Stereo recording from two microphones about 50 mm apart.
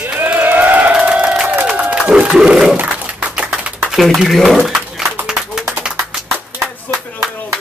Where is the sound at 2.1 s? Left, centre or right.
Centre.